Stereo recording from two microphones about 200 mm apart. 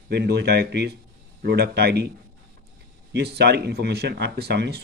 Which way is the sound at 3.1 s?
55° right (ahead or behind).